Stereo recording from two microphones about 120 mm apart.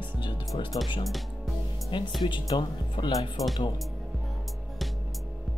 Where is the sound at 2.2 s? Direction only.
40° left (ahead or behind).